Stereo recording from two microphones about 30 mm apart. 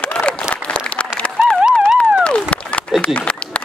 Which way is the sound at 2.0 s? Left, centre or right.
Left.